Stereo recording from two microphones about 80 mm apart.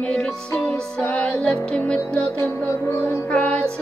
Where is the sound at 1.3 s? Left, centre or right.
Centre.